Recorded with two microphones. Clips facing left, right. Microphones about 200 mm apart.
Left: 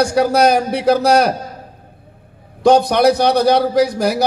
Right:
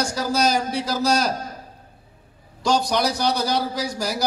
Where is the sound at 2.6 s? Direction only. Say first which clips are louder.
Left 10 dB; 60° left (ahead or behind).